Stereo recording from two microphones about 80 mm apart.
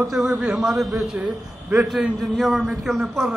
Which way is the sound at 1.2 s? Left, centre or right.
Centre.